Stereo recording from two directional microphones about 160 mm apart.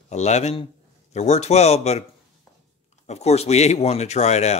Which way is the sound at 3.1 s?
40° left (ahead or behind).